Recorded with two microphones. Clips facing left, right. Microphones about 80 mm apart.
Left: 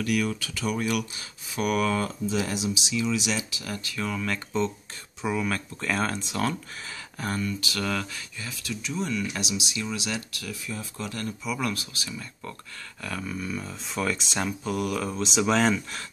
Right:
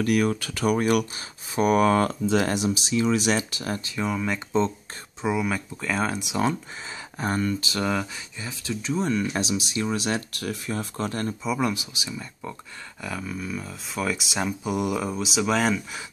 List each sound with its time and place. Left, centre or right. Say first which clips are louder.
0.0 s speech: right 4 dB; right
2.0 s speech: right 6 dB; right
3.7 s speech: right 3 dB; right
4.5 s speech: right 4 dB; right
5.2 s speech: right 2 dB; centre
7.2 s speech: right 4 dB; right
8.8 s speech: right 5 dB; right
10.5 s speech: right 5 dB; right; by 12.5 s centre
13.0 s speech: right 1 dB; centre